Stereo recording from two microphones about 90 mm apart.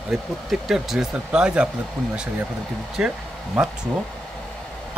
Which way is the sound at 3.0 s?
10° right (ahead or behind).